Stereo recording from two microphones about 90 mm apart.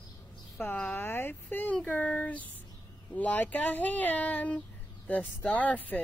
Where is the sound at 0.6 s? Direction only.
20° left (ahead or behind).